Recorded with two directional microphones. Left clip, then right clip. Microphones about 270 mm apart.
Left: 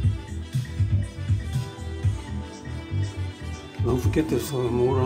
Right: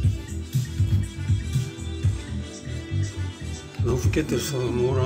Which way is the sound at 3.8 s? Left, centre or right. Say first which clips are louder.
Left 1 dB; centre.